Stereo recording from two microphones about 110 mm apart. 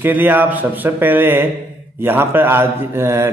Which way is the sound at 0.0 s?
15° right (ahead or behind).